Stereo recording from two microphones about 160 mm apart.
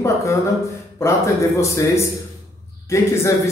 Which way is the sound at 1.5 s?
15° left (ahead or behind).